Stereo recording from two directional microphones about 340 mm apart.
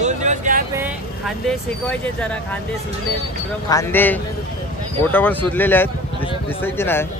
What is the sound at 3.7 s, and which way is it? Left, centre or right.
Speech, centre.